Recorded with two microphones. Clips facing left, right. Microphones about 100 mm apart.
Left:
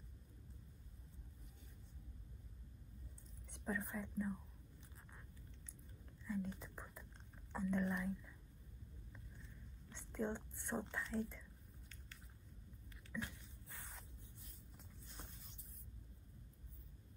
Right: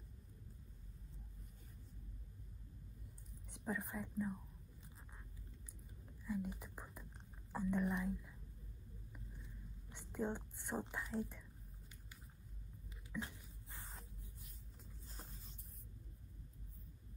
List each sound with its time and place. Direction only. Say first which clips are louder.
3.6 s speech: even; 15° right (ahead or behind)
6.2 s speech: right 1 dB; 15° right (ahead or behind)
9.1 s whispering: right 4 dB; 15° right (ahead or behind)
13.2 s a sound: left 1 dB; 20° right (ahead or behind)